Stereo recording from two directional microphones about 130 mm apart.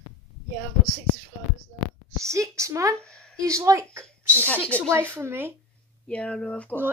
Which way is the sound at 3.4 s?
25° right (ahead or behind).